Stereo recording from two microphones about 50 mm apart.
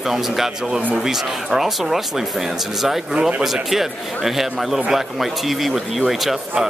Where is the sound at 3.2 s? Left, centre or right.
Centre.